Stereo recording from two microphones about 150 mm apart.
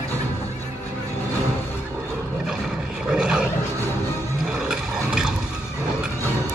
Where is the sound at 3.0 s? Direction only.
5° right (ahead or behind).